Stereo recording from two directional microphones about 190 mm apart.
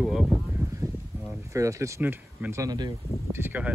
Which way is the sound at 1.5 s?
15° right (ahead or behind).